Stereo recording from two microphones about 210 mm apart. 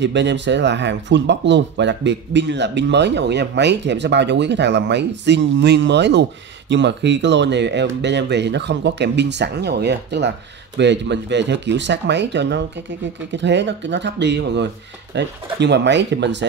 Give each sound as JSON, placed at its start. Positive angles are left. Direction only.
{"t": 0.0, "sound": "speech", "side_deg": -55}